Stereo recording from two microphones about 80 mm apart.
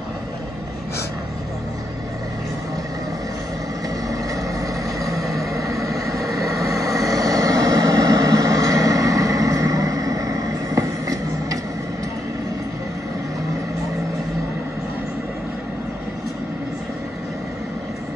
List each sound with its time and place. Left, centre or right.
4.1 s vehicle: right
5.1 s vehicle: centre
6.7 s vehicle: right